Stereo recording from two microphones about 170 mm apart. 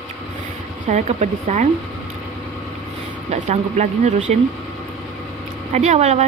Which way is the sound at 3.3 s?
40° right (ahead or behind).